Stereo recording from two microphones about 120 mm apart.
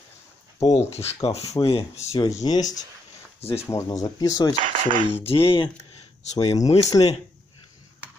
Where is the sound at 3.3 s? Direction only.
60° left (ahead or behind).